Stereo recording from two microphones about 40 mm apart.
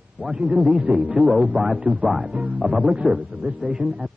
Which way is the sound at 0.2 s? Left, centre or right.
Right.